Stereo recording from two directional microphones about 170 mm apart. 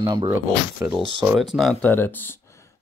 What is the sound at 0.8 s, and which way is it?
Speech, 10° right (ahead or behind).